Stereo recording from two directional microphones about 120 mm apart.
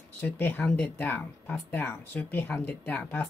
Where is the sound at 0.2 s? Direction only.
15° left (ahead or behind).